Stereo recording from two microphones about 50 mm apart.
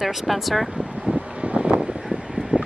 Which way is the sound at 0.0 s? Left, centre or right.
Centre.